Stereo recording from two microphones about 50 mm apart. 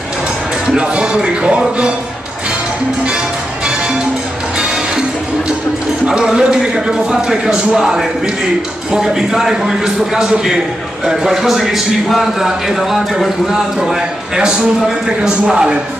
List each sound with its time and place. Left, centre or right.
0.7 s speech: centre
6.0 s a man's voice: centre